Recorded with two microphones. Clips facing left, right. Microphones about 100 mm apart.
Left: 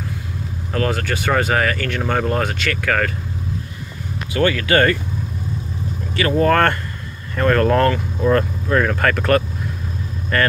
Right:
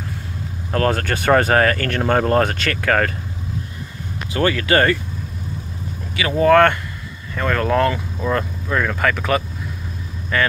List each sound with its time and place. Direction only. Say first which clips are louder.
0.7 s speech: right 2 dB; 45° right (ahead or behind)
4.3 s speech: left 1 dB; 25° right (ahead or behind)
6.1 s speech: right 2 dB; 10° right (ahead or behind)